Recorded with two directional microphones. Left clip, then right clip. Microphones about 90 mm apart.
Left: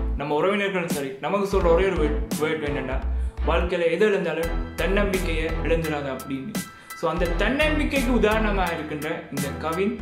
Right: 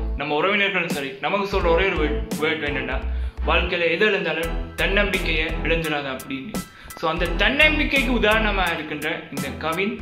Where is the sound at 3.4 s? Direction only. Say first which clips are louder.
Right 2 dB; 35° left (ahead or behind).